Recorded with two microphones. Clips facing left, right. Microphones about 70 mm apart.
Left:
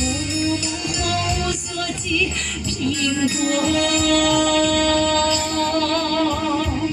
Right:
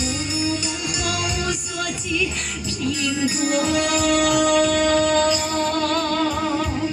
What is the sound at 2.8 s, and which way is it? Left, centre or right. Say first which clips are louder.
Music: left 2 dB; centre.